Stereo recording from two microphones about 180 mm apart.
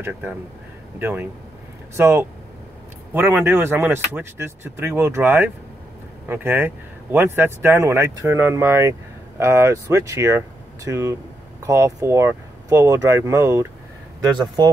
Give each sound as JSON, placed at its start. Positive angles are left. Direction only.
{"t": 0.0, "sound": "speech", "side_deg": -10}